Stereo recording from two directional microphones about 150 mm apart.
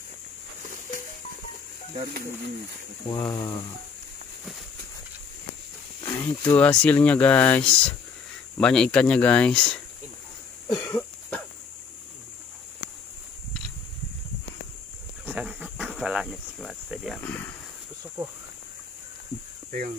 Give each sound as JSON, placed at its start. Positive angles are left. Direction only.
{"t": 3.1, "sound": "speech", "side_deg": 30}
{"t": 6.1, "sound": "speech", "side_deg": 15}
{"t": 10.7, "sound": "cough", "side_deg": 25}
{"t": 11.0, "sound": "cough", "side_deg": 10}
{"t": 15.2, "sound": "cricket", "side_deg": -5}
{"t": 17.2, "sound": "a sound", "side_deg": 15}